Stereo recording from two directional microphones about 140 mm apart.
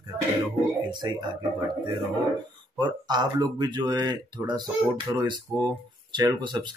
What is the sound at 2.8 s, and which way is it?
Speech, 30° right (ahead or behind).